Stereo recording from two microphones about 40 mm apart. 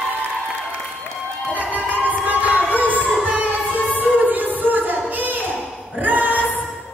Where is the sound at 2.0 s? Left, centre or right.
Right.